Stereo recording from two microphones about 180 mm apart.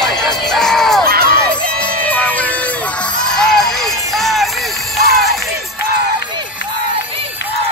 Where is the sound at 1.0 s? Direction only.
55° right (ahead or behind).